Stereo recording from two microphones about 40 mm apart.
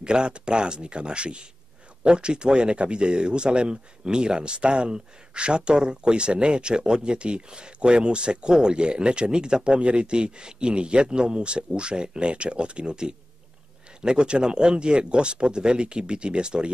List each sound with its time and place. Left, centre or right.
0.0 s speech: right